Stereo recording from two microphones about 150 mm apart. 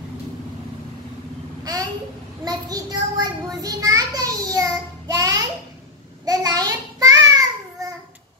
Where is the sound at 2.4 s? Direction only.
25° right (ahead or behind).